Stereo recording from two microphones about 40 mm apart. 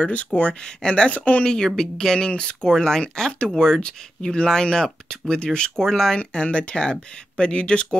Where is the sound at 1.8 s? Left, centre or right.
Centre.